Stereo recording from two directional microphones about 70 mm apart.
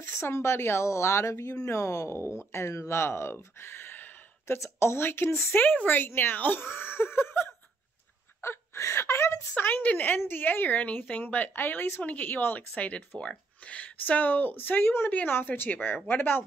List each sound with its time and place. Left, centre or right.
0.0 s speech: left
4.6 s speech: left
8.4 s wail: left
9.6 s a woman's voice: left